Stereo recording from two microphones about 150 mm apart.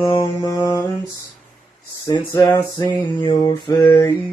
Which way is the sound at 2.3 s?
25° left (ahead or behind).